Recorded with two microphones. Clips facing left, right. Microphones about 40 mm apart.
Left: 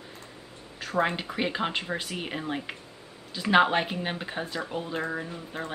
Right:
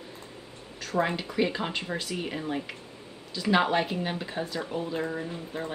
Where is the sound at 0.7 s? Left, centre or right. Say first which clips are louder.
Left 1 dB; centre.